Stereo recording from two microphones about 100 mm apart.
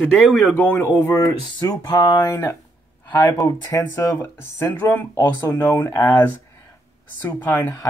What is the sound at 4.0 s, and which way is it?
Speech, 20° left (ahead or behind).